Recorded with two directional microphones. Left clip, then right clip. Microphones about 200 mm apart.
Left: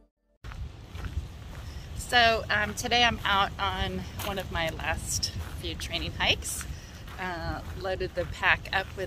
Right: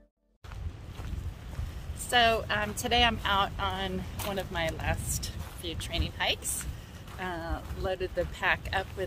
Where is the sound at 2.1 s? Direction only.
15° right (ahead or behind).